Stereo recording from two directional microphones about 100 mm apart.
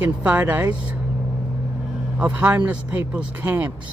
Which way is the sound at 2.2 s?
15° right (ahead or behind).